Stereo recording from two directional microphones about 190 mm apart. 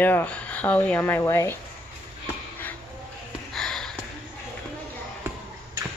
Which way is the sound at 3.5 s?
5° left (ahead or behind).